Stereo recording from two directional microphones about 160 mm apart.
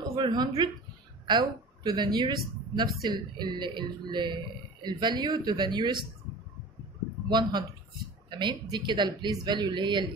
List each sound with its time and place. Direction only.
0.1 s a woman's voice: 25° right (ahead or behind)
7.2 s speech: 30° right (ahead or behind)